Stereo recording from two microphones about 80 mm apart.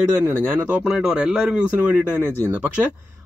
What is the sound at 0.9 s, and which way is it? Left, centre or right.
Speech, centre.